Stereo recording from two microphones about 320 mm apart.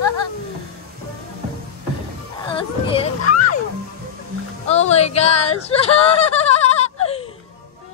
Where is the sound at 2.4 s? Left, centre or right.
Centre.